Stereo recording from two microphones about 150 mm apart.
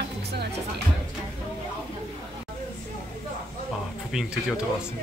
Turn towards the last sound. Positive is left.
turn(degrees=-5)  # may be behind; listen again after turning